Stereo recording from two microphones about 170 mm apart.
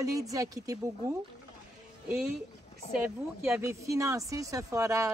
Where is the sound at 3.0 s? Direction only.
15° right (ahead or behind).